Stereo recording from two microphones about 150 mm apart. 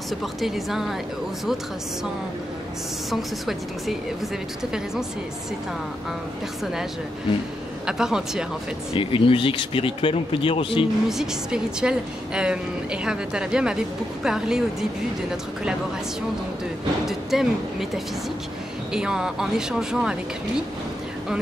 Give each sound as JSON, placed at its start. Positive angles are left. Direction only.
{"t": 0.2, "sound": "a woman's voice", "side_deg": 0}
{"t": 3.1, "sound": "a woman's voice", "side_deg": 0}
{"t": 6.6, "sound": "a woman's voice", "side_deg": -5}
{"t": 8.9, "sound": "speech", "side_deg": 35}
{"t": 11.1, "sound": "a woman's voice", "side_deg": -5}
{"t": 17.0, "sound": "a woman's voice", "side_deg": 0}